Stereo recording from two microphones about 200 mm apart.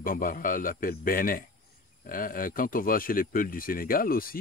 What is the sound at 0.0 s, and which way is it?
Speech, 45° left (ahead or behind).